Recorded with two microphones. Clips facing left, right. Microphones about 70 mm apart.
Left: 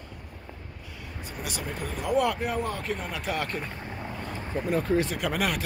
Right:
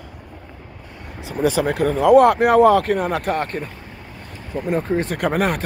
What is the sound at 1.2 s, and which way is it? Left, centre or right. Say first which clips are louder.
Speech: right 17 dB; right.